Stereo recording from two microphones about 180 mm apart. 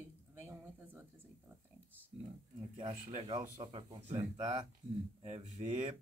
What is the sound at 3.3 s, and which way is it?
Speech, 25° right (ahead or behind).